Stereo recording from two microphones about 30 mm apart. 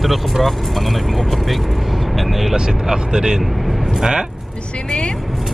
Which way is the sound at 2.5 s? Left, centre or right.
Right.